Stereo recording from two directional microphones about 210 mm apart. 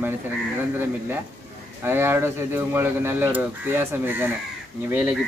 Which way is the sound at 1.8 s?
10° right (ahead or behind).